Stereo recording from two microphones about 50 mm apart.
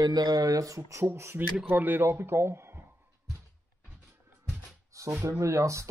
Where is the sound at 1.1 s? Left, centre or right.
Right.